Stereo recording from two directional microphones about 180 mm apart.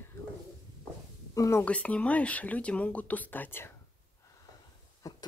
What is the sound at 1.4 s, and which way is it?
Speech, 15° left (ahead or behind).